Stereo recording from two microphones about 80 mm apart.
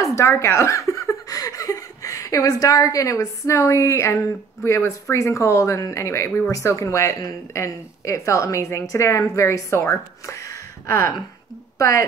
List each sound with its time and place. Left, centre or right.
0.0 s speech: left